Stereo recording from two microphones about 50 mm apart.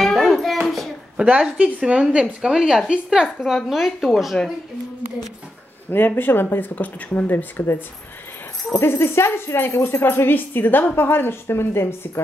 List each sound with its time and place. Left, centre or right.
0.1 s hands: centre
1.1 s a sound: right
1.4 s speech: centre
5.9 s a woman's voice: left
8.7 s a woman's voice: left